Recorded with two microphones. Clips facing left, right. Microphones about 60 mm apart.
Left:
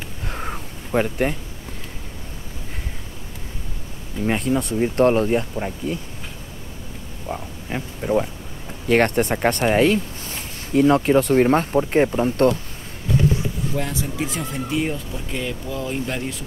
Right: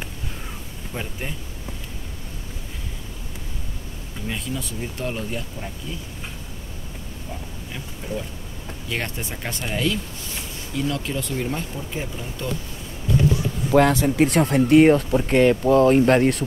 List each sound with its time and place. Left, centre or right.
0.9 s speech: left
4.3 s speech: left
7.2 s speech: left
13.7 s speech: right